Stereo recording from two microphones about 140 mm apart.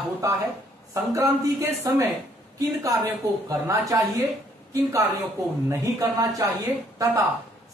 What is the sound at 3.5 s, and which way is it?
Speech, 25° right (ahead or behind).